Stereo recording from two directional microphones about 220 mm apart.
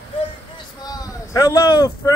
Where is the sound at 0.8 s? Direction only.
15° left (ahead or behind).